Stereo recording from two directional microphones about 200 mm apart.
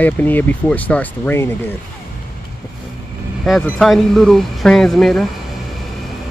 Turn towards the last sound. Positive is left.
turn(degrees=0)  # may be behind; listen again after turning